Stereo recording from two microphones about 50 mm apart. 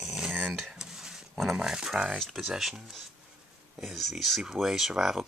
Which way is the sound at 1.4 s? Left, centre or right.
Centre.